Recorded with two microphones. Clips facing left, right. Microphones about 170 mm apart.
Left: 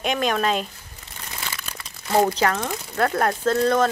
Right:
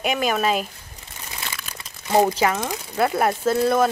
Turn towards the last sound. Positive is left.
turn(degrees=-10)  # may be behind; listen again after turning